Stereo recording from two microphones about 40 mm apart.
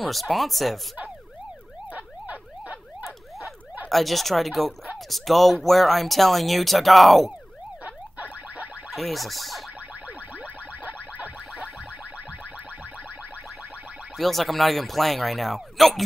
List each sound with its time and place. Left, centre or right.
0.0 s speech: centre
1.9 s emergency vehicle: right
3.9 s speech: centre
7.8 s a sound: right
8.9 s speech: centre
10.0 s a sound: right
14.1 s speech: centre